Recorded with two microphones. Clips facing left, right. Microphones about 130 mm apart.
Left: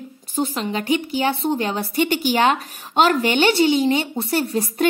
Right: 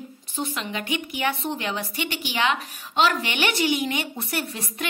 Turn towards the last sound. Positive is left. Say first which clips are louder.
# left 11 dB
turn(degrees=35)  # may be behind; listen again after turning